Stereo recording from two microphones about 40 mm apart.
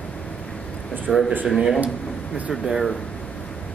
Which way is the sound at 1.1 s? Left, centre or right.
Centre.